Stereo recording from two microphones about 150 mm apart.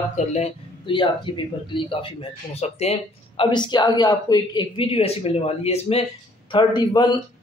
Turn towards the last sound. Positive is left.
turn(degrees=30)  # may be behind; listen again after turning